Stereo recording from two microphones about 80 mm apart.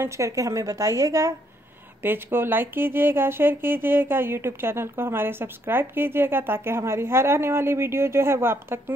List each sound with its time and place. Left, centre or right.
0.0 s a woman's voice: right
2.0 s speech: right